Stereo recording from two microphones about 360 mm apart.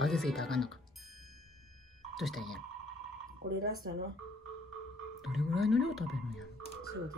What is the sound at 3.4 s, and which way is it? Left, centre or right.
Speech, right.